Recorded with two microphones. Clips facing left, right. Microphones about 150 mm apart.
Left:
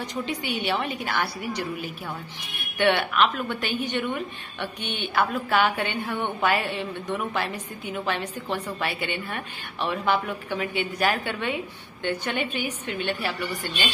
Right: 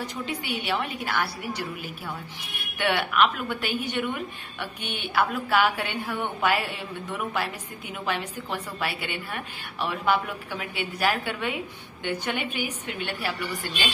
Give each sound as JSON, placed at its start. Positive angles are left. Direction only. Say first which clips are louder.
{"t": 0.0, "sound": "a woman's voice", "louder": "left 2 dB", "side_deg": -5}
{"t": 8.1, "sound": "a woman's voice", "louder": "even", "side_deg": -10}